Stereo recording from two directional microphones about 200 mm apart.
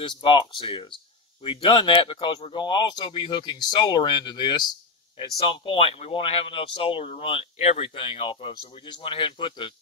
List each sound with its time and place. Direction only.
0.0 s speech: 25° left (ahead or behind)